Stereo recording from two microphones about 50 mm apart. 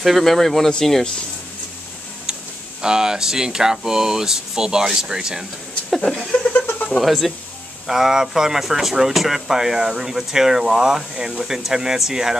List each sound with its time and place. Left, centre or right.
0.0 s speech: centre
2.8 s speech: centre
5.9 s speech: centre
6.4 s a sound: left
7.0 s speech: centre